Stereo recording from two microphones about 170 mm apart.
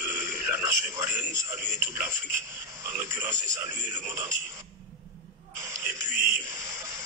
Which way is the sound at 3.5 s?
20° right (ahead or behind).